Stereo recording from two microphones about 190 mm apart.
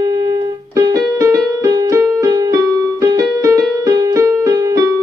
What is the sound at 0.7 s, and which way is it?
Music, 20° right (ahead or behind).